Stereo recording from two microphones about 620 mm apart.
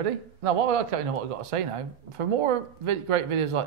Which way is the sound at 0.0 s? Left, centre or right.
Right.